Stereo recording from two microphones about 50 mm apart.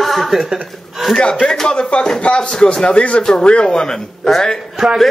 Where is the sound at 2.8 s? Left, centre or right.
Left.